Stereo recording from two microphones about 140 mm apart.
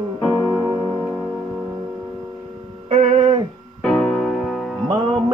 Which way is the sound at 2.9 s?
35° right (ahead or behind).